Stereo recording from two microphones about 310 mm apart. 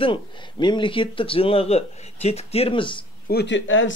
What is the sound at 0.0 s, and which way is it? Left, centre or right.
Speech, centre.